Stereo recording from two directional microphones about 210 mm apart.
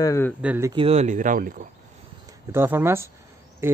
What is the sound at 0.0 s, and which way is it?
Speech, 15° left (ahead or behind).